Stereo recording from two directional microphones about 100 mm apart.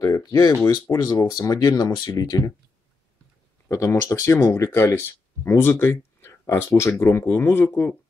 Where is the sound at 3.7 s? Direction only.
30° left (ahead or behind).